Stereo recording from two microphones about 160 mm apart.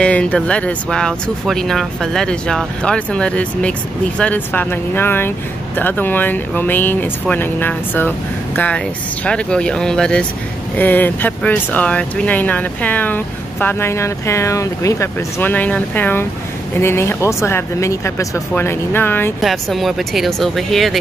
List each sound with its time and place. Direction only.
0.0 s speech: 5° left (ahead or behind)
19.4 s speech: centre (ahead or behind)